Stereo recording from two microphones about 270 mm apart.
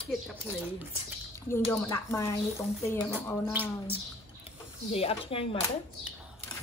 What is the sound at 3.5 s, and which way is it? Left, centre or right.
Speech, centre.